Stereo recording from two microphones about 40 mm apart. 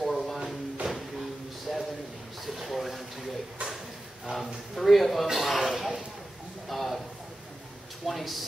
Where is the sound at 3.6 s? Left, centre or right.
Right.